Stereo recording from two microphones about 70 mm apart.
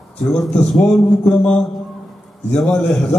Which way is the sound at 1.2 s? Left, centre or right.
Centre.